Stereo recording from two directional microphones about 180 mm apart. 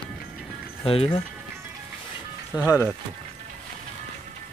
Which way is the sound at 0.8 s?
30° left (ahead or behind).